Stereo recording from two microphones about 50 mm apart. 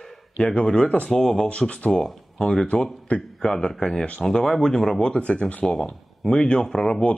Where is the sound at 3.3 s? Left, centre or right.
Centre.